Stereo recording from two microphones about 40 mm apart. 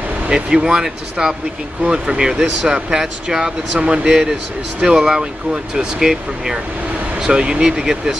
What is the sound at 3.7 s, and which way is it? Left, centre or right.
Speech, right.